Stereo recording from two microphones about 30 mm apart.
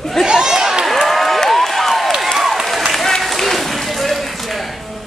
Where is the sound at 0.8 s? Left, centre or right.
Centre.